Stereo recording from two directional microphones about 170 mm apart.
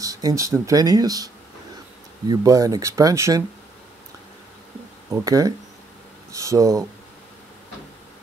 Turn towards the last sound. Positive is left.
turn(degrees=-20)  # may be behind; listen again after turning